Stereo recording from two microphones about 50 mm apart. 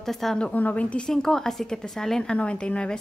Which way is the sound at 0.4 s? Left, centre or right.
Left.